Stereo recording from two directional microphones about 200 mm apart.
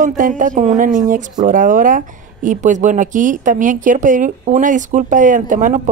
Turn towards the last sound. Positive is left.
turn(degrees=-40)  # may be behind; listen again after turning